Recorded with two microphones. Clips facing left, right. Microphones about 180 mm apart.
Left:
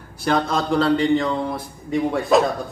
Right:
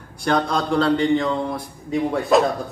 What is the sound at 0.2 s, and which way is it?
Speech, centre (ahead or behind).